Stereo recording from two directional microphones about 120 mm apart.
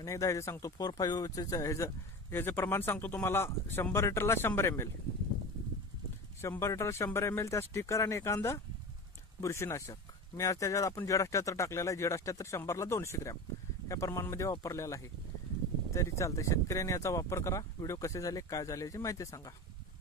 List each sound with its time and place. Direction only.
0.0 s speech: 25° left (ahead or behind)
6.4 s speech: 25° left (ahead or behind)